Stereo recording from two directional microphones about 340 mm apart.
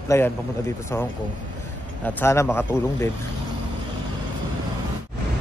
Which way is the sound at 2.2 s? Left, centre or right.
Centre.